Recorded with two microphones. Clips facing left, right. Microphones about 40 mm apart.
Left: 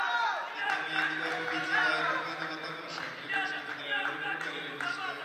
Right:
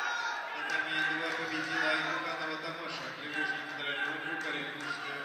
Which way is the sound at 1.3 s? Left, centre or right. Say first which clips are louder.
Left 2 dB; left.